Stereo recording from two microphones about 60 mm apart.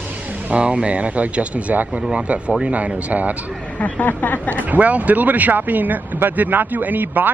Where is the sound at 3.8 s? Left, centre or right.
Left.